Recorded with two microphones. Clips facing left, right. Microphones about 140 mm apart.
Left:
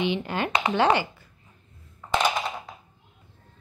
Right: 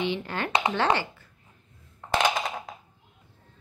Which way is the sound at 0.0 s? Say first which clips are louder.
Left 3 dB; 15° left (ahead or behind).